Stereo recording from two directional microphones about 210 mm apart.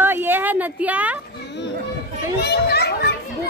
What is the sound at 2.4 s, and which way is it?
Speech, 50° left (ahead or behind).